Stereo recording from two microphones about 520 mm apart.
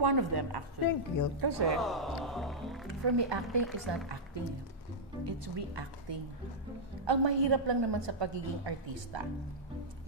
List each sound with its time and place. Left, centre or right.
0.0 s a woman's voice: right
0.8 s a woman's voice: left
1.4 s a woman's voice: right
1.8 s speech: centre
2.9 s a woman's voice: right
5.2 s a woman's voice: right